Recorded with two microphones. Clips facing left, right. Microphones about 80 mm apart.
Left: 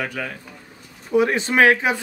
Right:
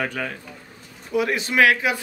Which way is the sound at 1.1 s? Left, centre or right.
Left.